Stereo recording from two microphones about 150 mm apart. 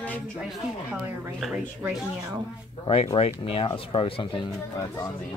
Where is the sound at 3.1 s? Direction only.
40° left (ahead or behind).